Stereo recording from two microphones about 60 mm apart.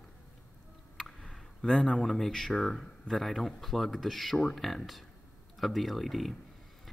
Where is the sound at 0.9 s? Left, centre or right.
Centre.